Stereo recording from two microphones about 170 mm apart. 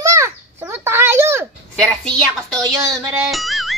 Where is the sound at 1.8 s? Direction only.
5° left (ahead or behind).